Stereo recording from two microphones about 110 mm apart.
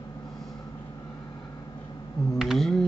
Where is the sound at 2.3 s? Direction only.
Centre (ahead or behind).